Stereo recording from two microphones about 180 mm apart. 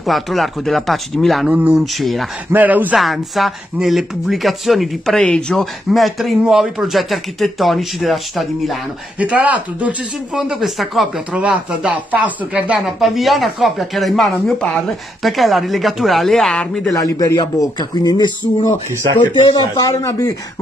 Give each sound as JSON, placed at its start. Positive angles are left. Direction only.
{"t": 0.0, "sound": "speech", "side_deg": 0}
{"t": 16.9, "sound": "speech", "side_deg": 20}
{"t": 19.4, "sound": "speech", "side_deg": 25}